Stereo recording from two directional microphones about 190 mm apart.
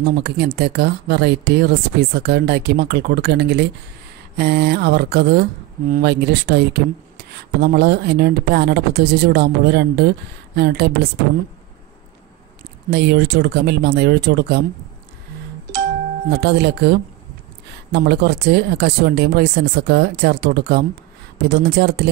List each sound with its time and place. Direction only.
0.2 s speech: 60° right (ahead or behind)
12.9 s speech: 60° right (ahead or behind)
16.3 s speech: 60° right (ahead or behind)